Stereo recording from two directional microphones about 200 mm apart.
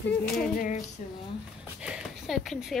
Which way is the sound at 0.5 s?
40° left (ahead or behind).